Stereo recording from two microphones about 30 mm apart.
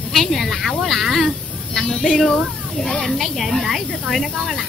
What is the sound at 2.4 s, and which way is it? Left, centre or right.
Speech, centre.